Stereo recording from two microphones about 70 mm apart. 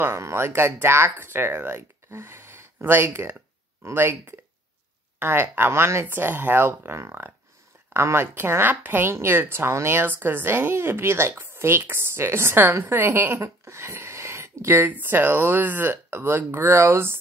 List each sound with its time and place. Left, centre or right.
0.0 s speech: right